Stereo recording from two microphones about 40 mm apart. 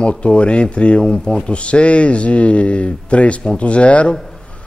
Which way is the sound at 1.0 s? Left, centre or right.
Centre.